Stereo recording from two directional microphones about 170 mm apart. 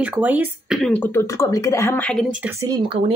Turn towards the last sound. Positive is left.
turn(degrees=-25)  # may be behind; listen again after turning